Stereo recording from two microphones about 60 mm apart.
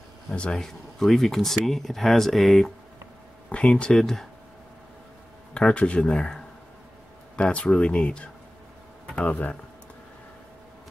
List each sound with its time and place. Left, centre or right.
0.3 s speech: centre
0.6 s speech: centre
3.4 s speech: centre
5.5 s speech: centre